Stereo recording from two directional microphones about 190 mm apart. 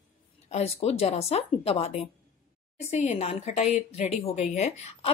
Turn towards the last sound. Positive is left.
turn(degrees=35)  # may be behind; listen again after turning